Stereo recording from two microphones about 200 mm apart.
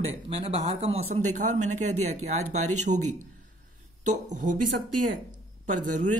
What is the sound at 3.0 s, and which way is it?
Mantra, 90° right.